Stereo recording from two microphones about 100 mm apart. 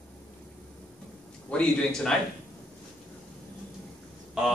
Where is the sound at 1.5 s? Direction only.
10° left (ahead or behind).